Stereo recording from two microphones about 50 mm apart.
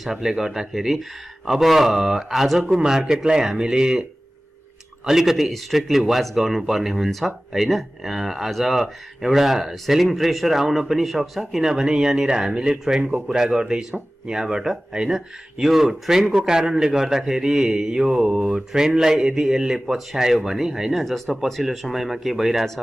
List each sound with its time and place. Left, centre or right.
0.0 s a man's voice: centre
5.0 s a man's voice: centre
21.0 s speech: centre